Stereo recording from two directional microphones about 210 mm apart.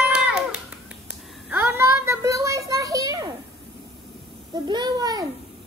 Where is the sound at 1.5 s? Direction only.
10° right (ahead or behind).